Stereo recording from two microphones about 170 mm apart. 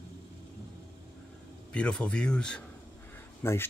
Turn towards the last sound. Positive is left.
turn(degrees=15)  # may be behind; listen again after turning